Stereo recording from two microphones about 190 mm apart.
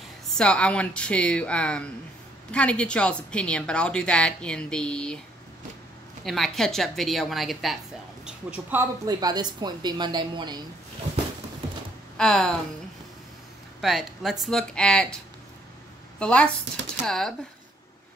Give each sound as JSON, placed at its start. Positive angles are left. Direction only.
{"t": 0.4, "sound": "a woman's voice", "side_deg": 5}
{"t": 6.2, "sound": "a woman's voice", "side_deg": 0}
{"t": 12.2, "sound": "a woman's voice", "side_deg": 5}
{"t": 13.7, "sound": "a woman's voice", "side_deg": 0}
{"t": 16.2, "sound": "a woman's voice", "side_deg": 5}